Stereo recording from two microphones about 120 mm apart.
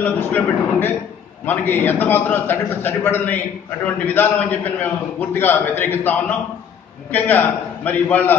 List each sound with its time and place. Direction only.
0.0 s a man's voice: 15° left (ahead or behind)